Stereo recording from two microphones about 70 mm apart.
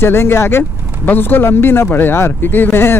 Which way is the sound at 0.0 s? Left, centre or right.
Left.